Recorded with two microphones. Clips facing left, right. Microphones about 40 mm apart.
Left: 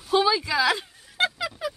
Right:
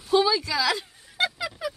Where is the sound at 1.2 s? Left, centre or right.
Centre.